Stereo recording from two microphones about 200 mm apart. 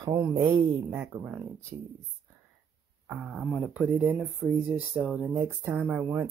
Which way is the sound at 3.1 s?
5° right (ahead or behind).